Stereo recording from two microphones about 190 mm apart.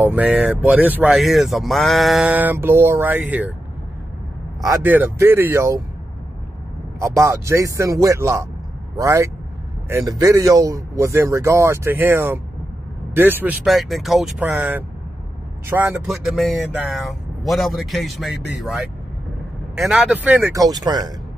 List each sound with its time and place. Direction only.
0.0 s speech: 10° right (ahead or behind)
4.6 s speech: 15° right (ahead or behind)
7.0 s speech: 15° right (ahead or behind)